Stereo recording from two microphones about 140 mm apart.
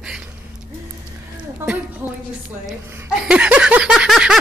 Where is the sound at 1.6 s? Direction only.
20° right (ahead or behind).